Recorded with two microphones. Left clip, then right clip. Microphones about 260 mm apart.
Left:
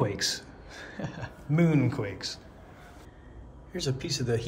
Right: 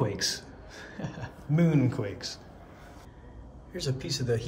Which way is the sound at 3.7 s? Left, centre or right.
Centre.